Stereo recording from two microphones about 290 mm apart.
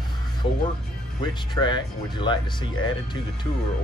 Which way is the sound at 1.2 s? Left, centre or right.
Centre.